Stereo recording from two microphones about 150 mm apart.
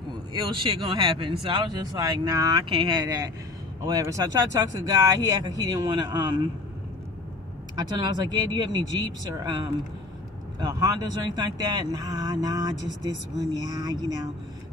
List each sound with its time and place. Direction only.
0.3 s speech: 30° right (ahead or behind)
3.8 s speech: 25° right (ahead or behind)
7.7 s speech: 30° right (ahead or behind)